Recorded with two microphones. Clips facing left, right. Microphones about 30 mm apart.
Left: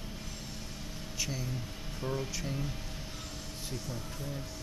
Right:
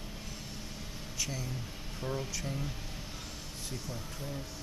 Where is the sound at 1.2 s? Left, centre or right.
Centre.